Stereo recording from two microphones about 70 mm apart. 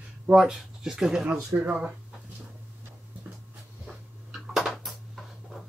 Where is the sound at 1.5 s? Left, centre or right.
Right.